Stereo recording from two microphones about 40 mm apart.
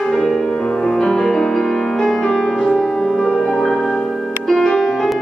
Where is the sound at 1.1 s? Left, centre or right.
Centre.